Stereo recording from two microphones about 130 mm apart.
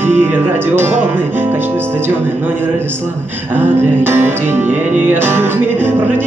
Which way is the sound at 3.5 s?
15° right (ahead or behind).